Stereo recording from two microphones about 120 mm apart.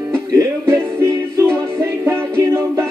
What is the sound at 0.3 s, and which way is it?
Music, 25° right (ahead or behind).